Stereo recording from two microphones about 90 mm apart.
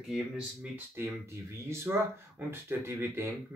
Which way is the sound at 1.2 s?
30° right (ahead or behind).